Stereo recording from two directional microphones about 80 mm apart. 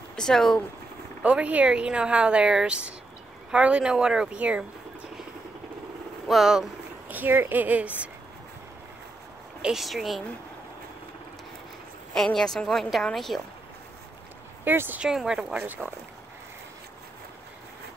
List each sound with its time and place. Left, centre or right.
0.1 s speech: centre
1.2 s speech: centre
6.2 s a woman's voice: centre
7.1 s speech: right
9.6 s a woman's voice: centre
12.1 s a woman's voice: centre
14.6 s speech: right
15.0 s speech: centre
15.5 s speech: right